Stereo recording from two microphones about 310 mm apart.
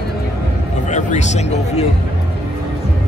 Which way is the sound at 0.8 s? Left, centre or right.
Left.